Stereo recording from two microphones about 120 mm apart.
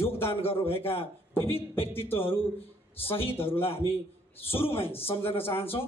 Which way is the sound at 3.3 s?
20° left (ahead or behind).